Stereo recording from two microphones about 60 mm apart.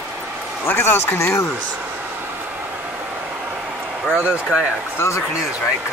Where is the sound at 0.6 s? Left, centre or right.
Left.